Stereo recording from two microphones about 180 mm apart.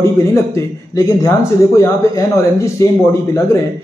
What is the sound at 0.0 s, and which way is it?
Speech, 15° left (ahead or behind).